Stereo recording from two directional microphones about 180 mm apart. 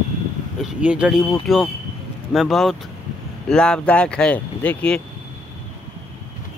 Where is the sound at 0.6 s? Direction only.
5° right (ahead or behind).